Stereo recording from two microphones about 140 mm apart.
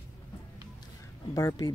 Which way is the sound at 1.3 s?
25° left (ahead or behind).